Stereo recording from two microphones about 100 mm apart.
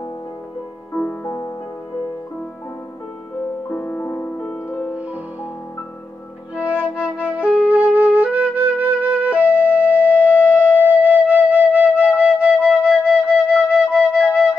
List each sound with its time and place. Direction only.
0.9 s music: 20° left (ahead or behind)
3.3 s music: 20° left (ahead or behind)
6.5 s flute: 10° right (ahead or behind)